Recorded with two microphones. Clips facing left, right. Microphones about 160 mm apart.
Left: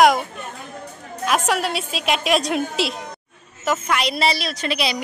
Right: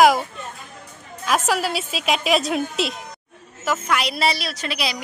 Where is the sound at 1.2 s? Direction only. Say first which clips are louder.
Even; centre (ahead or behind).